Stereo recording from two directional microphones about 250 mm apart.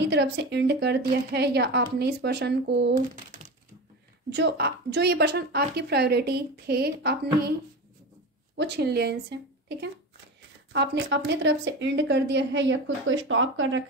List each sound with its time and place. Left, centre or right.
0.0 s a woman's voice: right
4.3 s a woman's voice: right
8.5 s a woman's voice: right